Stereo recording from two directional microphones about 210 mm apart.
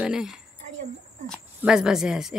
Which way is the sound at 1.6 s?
5° right (ahead or behind).